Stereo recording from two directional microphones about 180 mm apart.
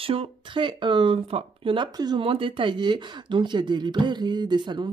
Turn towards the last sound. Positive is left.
turn(degrees=-25)  # may be behind; listen again after turning